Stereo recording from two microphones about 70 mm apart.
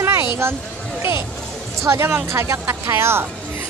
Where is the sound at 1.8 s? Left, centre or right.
Right.